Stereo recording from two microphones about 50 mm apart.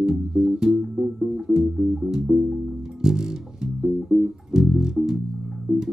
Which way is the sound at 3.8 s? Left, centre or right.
Centre.